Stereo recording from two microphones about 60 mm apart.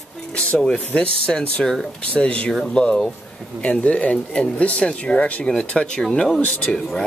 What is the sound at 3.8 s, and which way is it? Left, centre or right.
Speech, left.